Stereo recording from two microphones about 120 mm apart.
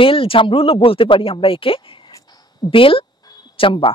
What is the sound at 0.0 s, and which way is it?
Speech, 50° left (ahead or behind).